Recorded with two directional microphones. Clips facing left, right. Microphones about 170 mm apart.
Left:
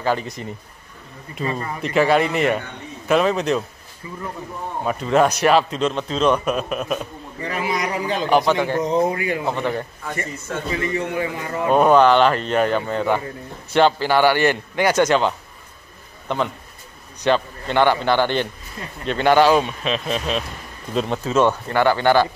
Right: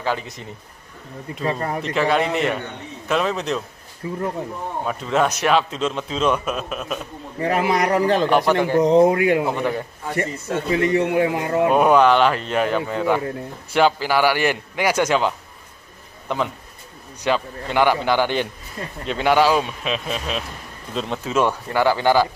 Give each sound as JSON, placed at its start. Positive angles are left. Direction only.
{"t": 0.0, "sound": "a man's voice", "side_deg": 0}
{"t": 1.4, "sound": "a man's voice", "side_deg": -60}
{"t": 1.8, "sound": "a man's voice", "side_deg": 5}
{"t": 4.0, "sound": "a man's voice", "side_deg": -60}
{"t": 4.8, "sound": "a man's voice", "side_deg": 5}
{"t": 7.4, "sound": "a man's voice", "side_deg": -60}
{"t": 8.3, "sound": "a man's voice", "side_deg": 0}
{"t": 8.8, "sound": "speech", "side_deg": -75}
{"t": 9.4, "sound": "a man's voice", "side_deg": -10}
{"t": 10.7, "sound": "a man's voice", "side_deg": -70}
{"t": 11.7, "sound": "a man's voice", "side_deg": -5}
{"t": 21.2, "sound": "a man's voice", "side_deg": -10}